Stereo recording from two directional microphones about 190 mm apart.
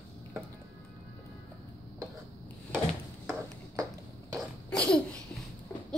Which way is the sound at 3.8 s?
20° right (ahead or behind).